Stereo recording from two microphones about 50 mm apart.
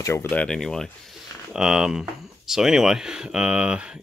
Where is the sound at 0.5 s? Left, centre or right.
Centre.